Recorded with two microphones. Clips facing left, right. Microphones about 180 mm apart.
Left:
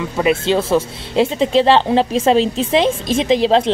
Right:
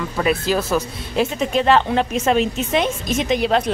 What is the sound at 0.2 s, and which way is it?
Speech, 25° left (ahead or behind).